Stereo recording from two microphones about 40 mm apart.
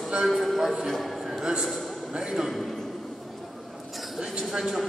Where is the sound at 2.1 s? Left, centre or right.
Centre.